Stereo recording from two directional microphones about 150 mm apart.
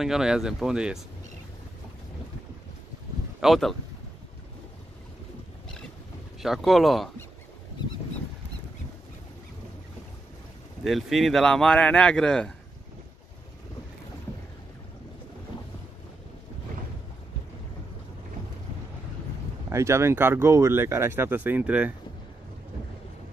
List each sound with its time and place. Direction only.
0.0 s speech: 5° right (ahead or behind)
3.3 s speech: centre (ahead or behind)
6.4 s speech: centre (ahead or behind)
10.8 s speech: centre (ahead or behind)
19.7 s speech: 20° right (ahead or behind)